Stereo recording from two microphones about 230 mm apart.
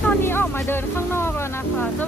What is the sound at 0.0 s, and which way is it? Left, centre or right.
Music, centre.